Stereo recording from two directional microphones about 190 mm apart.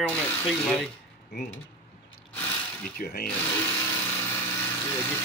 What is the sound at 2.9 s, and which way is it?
Speech, 50° left (ahead or behind).